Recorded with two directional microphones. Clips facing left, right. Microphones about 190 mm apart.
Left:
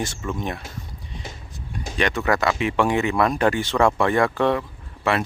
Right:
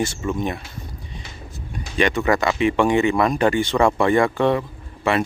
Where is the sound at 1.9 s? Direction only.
Centre (ahead or behind).